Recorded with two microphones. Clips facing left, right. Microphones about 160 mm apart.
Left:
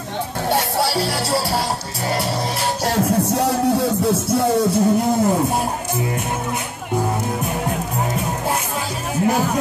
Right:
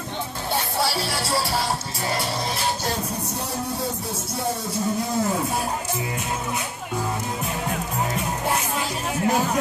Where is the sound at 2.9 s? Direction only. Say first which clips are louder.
Left 9 dB; 90° left.